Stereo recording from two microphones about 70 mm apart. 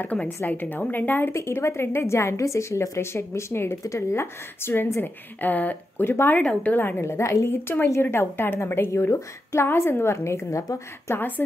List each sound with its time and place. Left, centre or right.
0.5 s a woman's voice: left
1.3 s a woman's voice: left
6.3 s a woman's voice: left
7.0 s a woman's voice: left
7.6 s a woman's voice: left
11.1 s a woman's voice: left